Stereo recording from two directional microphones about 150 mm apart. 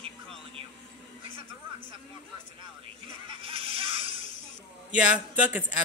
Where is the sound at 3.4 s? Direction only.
40° right (ahead or behind).